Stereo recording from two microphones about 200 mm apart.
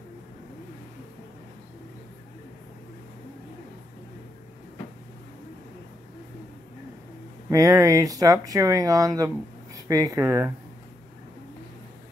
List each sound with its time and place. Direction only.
7.4 s speech: 15° right (ahead or behind)